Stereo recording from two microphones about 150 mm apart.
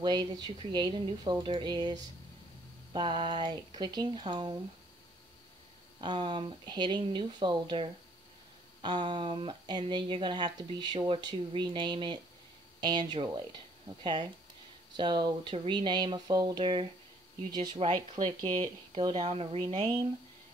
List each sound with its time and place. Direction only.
0.0 s speech: 30° right (ahead or behind)
5.9 s speech: 30° right (ahead or behind)
15.0 s speech: 30° right (ahead or behind)